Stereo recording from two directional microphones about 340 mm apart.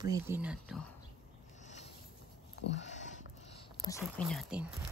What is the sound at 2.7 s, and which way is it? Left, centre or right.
Speech, left.